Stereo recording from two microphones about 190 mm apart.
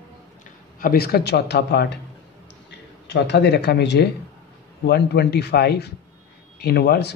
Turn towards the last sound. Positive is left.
turn(degrees=60)  # may be behind; listen again after turning